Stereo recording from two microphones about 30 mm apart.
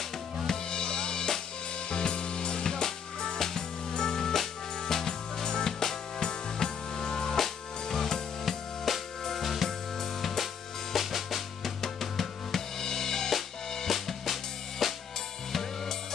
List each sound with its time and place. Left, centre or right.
0.5 s drum kit: left
1.9 s music: left; by 9.7 s centre
10.2 s drum: centre
13.8 s drum kit: centre
15.5 s music: centre